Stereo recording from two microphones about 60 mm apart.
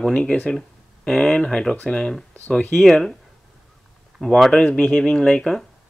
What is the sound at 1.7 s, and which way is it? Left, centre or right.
Speech, left.